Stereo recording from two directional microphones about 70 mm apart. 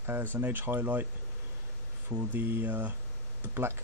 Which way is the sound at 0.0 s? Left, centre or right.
Right.